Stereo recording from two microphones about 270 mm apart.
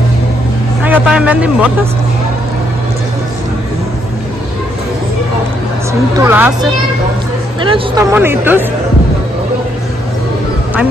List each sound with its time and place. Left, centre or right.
0.8 s a man's voice: centre
6.1 s speech: centre
7.6 s speech: centre
8.1 s speech: centre